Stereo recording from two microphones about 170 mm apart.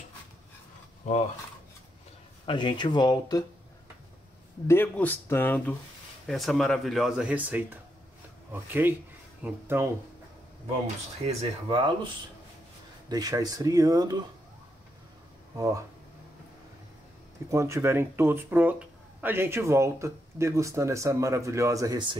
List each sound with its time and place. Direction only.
2.4 s speech: 25° left (ahead or behind)
4.6 s speech: 10° left (ahead or behind); by 9.8 s 15° right (ahead or behind)
11.2 s speech: 30° right (ahead or behind)
13.1 s speech: 20° right (ahead or behind)
15.5 s speech: 20° right (ahead or behind)
17.5 s speech: 15° right (ahead or behind)